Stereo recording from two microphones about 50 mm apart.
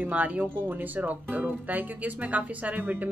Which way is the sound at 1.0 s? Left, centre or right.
Right.